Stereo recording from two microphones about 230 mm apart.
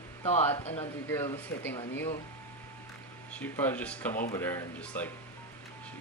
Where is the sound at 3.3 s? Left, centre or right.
Centre.